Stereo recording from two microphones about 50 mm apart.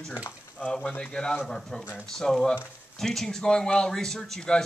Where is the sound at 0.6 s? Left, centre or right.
Left.